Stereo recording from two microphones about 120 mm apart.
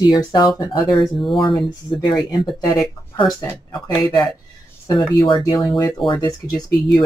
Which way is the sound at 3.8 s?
30° left (ahead or behind).